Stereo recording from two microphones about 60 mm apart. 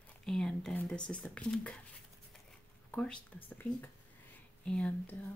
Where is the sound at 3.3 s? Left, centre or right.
Left.